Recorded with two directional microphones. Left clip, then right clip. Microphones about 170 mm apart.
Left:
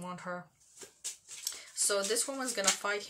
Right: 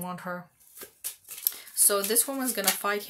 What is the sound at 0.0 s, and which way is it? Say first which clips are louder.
Shuffling cards: right 5 dB; 45° right (ahead or behind).